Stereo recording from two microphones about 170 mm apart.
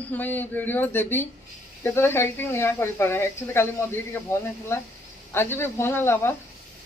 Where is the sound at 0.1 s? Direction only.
10° left (ahead or behind).